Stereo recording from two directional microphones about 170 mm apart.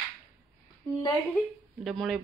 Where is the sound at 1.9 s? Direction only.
Centre (ahead or behind).